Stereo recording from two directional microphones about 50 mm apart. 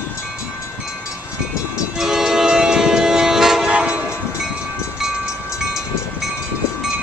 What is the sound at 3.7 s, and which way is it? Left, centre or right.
Train, right.